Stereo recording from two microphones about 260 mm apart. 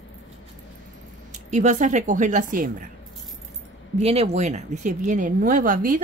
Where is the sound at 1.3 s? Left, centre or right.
Right.